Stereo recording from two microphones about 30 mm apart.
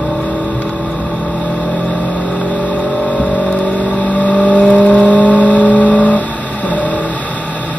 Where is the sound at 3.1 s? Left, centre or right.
Left.